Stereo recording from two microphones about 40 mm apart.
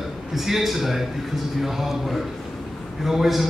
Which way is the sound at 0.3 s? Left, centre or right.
Centre.